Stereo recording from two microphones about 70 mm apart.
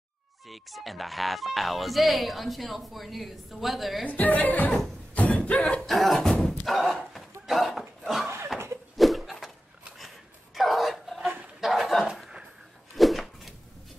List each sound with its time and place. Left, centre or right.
0.5 s speech: centre
4.0 s speech: left
5.1 s a sound: centre
5.9 s cough: centre
6.4 s horse: centre
7.4 s dog: centre
8.0 s a sound: centre